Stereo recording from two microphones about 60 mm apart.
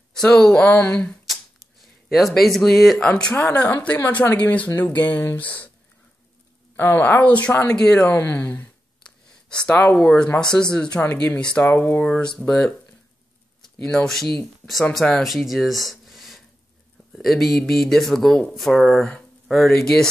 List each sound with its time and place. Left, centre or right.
0.1 s speech: centre
0.7 s speech: left
2.1 s speech: centre
3.0 s speech: centre
3.3 s speech: left
6.8 s speech: left
8.1 s speech: left
9.0 s a sound: centre
9.9 s speech: centre
11.6 s speech: left
12.0 s speech: centre